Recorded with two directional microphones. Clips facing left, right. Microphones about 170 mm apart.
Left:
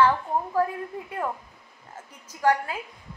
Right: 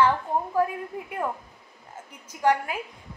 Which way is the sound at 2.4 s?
20° right (ahead or behind).